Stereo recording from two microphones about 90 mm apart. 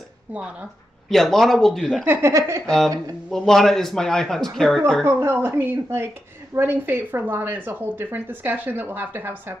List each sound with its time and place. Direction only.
0.3 s speech: 15° right (ahead or behind)
1.0 s a man's voice: 5° left (ahead or behind)
2.0 s a woman's voice: 30° right (ahead or behind)
2.6 s a man's voice: 5° left (ahead or behind)
5.0 s a woman's voice: 25° right (ahead or behind)